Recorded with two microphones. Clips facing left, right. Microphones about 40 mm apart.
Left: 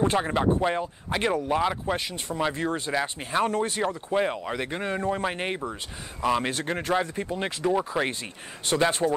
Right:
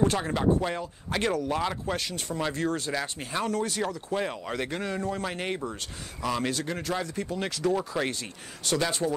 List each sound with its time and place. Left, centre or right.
0.0 s speech: left